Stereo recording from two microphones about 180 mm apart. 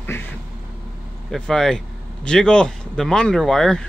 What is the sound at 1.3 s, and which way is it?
Speech, 5° left (ahead or behind).